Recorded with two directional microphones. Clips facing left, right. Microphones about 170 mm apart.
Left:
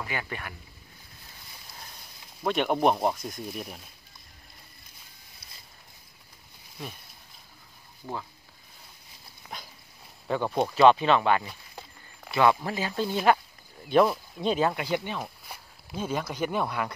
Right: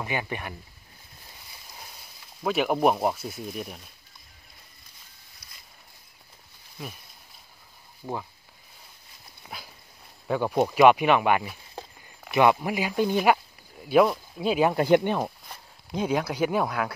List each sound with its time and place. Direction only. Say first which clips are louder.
0.0 s speech: right 4 dB; 20° right (ahead or behind)
2.4 s speech: right 1 dB; 5° right (ahead or behind)
9.5 s dog: even; 5° right (ahead or behind)
10.2 s speech: right 3 dB; 10° right (ahead or behind)
14.9 s speech: right 9 dB; 50° right (ahead or behind)
15.9 s speech: right 5 dB; 15° right (ahead or behind)